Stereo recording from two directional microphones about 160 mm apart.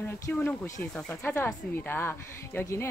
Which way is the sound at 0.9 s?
5° left (ahead or behind).